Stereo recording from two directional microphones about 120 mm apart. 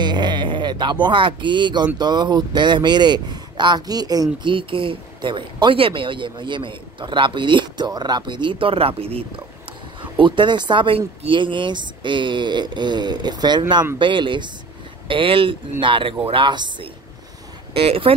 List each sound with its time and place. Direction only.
0.0 s speech: 40° right (ahead or behind); by 9.2 s 55° right (ahead or behind)
10.1 s speech: 40° right (ahead or behind)
17.7 s speech: 50° right (ahead or behind)